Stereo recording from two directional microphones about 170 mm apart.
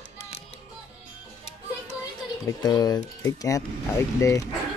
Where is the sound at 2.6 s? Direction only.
20° left (ahead or behind).